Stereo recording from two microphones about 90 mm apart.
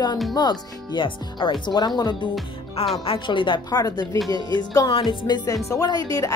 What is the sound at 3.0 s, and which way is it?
Speech, 80° left.